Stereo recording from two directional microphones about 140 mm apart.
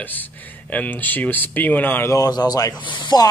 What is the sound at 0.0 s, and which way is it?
Speech, 15° left (ahead or behind).